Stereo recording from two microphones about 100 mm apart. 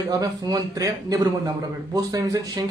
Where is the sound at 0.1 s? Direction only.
40° right (ahead or behind).